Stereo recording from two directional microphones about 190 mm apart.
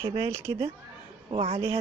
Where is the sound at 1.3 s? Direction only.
30° right (ahead or behind).